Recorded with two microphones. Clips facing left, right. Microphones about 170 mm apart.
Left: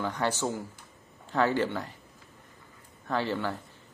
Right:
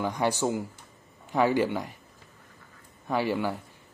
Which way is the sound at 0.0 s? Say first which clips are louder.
Right 3 dB; 15° right (ahead or behind).